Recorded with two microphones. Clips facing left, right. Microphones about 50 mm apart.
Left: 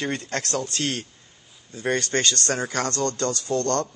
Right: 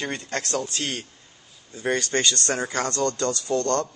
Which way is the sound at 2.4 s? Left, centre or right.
Right.